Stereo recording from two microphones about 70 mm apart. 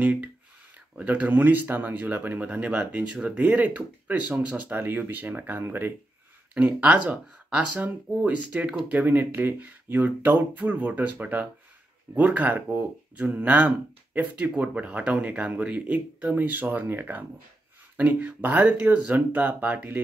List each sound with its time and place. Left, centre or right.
0.0 s speech: right